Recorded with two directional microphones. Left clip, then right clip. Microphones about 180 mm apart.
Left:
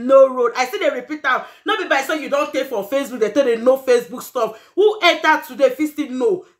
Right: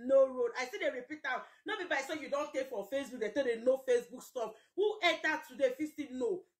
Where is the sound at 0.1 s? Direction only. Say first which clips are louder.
Left 16 dB; 15° left (ahead or behind).